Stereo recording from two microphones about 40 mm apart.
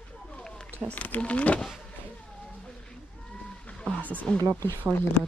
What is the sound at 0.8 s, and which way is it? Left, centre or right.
Speech, centre.